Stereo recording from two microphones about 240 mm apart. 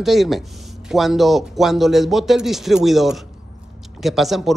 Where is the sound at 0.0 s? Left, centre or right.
Centre.